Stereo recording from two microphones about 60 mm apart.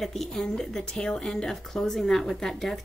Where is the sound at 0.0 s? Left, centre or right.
Centre.